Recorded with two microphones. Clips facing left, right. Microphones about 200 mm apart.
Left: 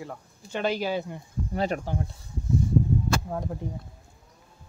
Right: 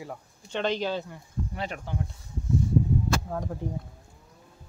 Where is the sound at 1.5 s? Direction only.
40° left (ahead or behind).